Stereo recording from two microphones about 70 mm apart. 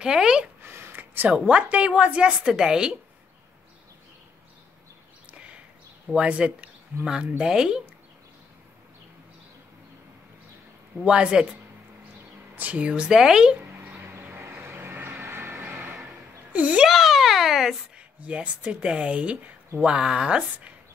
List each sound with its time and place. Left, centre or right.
0.0 s speech: centre
0.6 s a woman's voice: right; by 3.0 s centre
6.1 s speech: centre
11.1 s speech: centre
12.5 s speech: right
13.6 s a sound: right
15.6 s music: right
16.1 s a sound: right
16.8 s a sound: centre
17.9 s speech: centre